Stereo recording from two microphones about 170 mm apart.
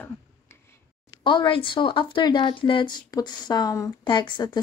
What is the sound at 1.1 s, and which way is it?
Speech, 30° left (ahead or behind).